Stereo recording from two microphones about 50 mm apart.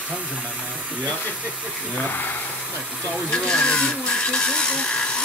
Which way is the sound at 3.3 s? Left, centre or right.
Centre.